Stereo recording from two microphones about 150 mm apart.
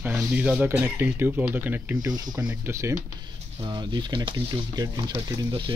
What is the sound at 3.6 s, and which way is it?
Speech, 30° right (ahead or behind).